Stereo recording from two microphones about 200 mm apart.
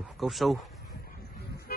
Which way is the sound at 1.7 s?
50° left (ahead or behind).